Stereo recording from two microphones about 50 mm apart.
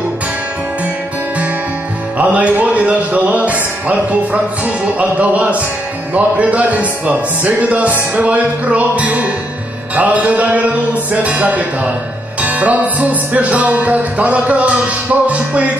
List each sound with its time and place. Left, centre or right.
2.1 s speech: right